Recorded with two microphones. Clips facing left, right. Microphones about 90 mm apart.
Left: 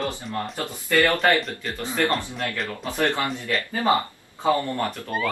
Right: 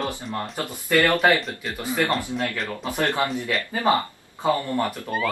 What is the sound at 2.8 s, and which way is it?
Speech, 15° right (ahead or behind).